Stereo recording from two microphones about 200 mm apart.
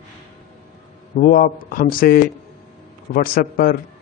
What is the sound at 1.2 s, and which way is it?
A man's voice, 45° left (ahead or behind).